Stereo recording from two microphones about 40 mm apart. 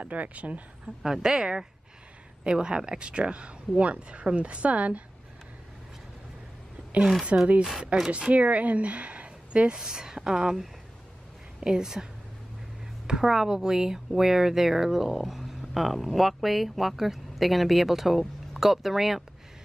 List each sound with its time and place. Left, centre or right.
0.0 s speech: right
1.0 s speech: centre; by 5.0 s right
7.0 s speech: centre
7.9 s speech: right
8.3 s speech: right
9.6 s speech: centre